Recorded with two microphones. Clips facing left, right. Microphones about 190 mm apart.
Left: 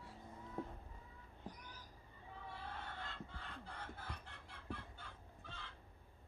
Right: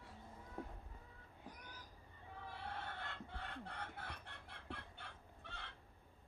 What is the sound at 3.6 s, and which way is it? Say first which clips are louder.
Chicken: right 2 dB; 65° right (ahead or behind).